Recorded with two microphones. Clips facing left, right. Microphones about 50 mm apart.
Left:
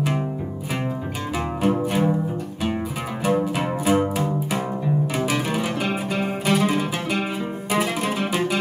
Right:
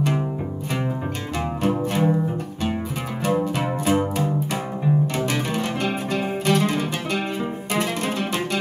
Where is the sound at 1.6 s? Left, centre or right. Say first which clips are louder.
Left 1 dB; centre.